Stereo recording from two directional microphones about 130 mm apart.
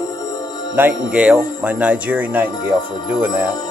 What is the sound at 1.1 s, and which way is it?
Speech, 10° right (ahead or behind).